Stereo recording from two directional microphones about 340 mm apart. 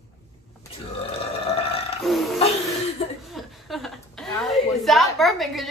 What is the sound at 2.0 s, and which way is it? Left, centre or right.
Burping, centre.